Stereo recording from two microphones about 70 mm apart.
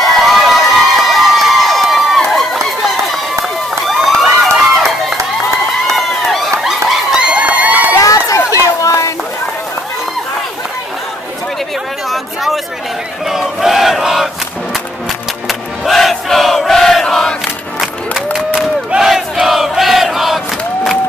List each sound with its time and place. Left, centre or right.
0.0 s crowd: centre
3.8 s a sound: centre
5.9 s run: centre
6.6 s a sound: centre; by 7.9 s right
8.0 s run: left
8.8 s a sound: left
13.3 s battle cry: centre
15.4 s crowd: centre
17.7 s crowd: centre